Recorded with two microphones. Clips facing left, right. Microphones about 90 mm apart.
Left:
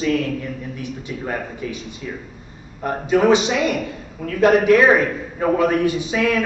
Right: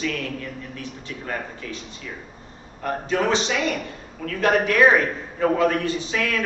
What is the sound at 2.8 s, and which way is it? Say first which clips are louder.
A man's voice: left 6 dB; 15° left (ahead or behind).